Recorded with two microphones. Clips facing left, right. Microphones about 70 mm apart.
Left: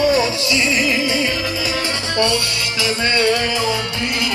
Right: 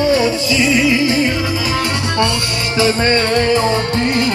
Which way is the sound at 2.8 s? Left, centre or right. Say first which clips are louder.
Right 4 dB; right.